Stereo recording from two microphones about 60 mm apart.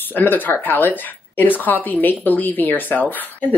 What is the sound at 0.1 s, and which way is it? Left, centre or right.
A woman's voice, left.